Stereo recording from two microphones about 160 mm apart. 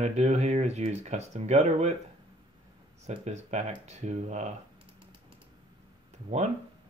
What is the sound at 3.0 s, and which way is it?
Speech, 45° right (ahead or behind).